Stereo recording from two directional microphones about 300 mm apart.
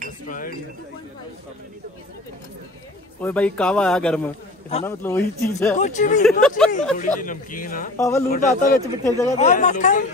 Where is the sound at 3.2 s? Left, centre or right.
Centre.